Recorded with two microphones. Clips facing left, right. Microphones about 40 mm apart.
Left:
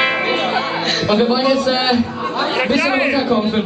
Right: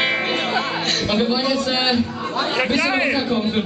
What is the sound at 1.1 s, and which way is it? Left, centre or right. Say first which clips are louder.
A man's voice: left 6 dB; centre.